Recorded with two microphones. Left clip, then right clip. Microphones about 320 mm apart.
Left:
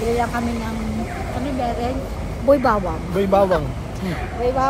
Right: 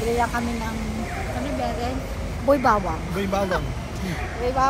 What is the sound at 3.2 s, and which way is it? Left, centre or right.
Speech, centre.